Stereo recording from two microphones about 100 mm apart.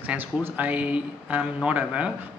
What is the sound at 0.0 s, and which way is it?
Speech, 15° right (ahead or behind).